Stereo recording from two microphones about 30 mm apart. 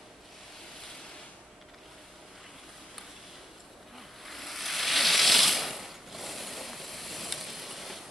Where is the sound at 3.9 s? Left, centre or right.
Centre.